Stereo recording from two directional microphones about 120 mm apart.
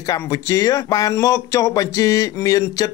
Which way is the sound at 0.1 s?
30° left (ahead or behind).